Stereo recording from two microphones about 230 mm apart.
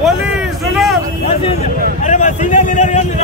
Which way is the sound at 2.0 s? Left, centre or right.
Left.